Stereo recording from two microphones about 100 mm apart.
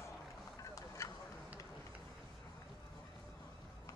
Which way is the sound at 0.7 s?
35° left (ahead or behind).